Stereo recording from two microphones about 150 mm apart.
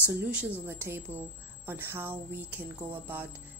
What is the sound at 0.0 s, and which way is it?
Speech, 10° right (ahead or behind).